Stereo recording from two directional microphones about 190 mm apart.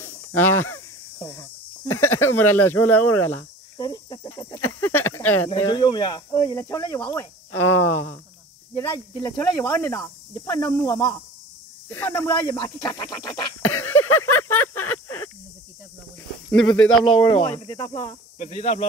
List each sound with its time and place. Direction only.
0.0 s snake: 10° left (ahead or behind)
1.2 s speech: 10° left (ahead or behind)
3.7 s cricket: 20° left (ahead or behind)
4.3 s speech: 15° left (ahead or behind)
5.5 s speech: 30° left (ahead or behind); by 13.7 s 10° left (ahead or behind)
13.7 s a sound: 10° left (ahead or behind)
16.5 s speech: 5° left (ahead or behind)
17.0 s speech: 30° left (ahead or behind)
18.4 s speech: 35° left (ahead or behind)